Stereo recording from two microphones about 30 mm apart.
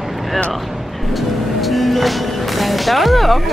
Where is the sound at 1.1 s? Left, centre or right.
Centre.